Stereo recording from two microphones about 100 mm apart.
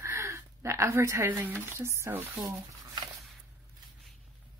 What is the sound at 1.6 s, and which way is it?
Speech, 25° right (ahead or behind).